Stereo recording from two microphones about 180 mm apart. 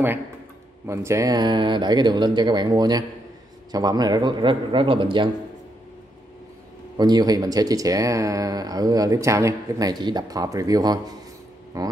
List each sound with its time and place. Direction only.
0.8 s speech: 15° right (ahead or behind)
7.0 s speech: 20° right (ahead or behind)